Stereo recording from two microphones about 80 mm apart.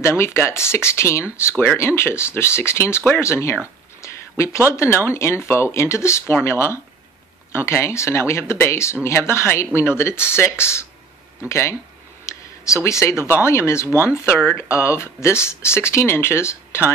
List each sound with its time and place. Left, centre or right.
0.0 s speech: left
12.3 s a sound: left
13.2 s speech: left